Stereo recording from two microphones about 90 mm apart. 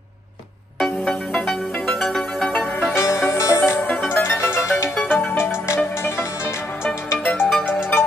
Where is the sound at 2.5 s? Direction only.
25° left (ahead or behind).